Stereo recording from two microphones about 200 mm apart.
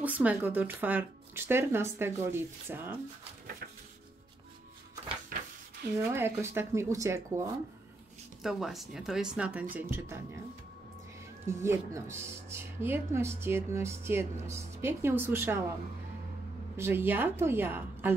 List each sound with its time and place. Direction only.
0.0 s speech: 10° right (ahead or behind)
5.3 s a sound: 45° right (ahead or behind)
6.1 s speech: 10° right (ahead or behind)
8.4 s speech: centre (ahead or behind)
11.4 s speech: 15° right (ahead or behind)
16.7 s speech: 10° right (ahead or behind)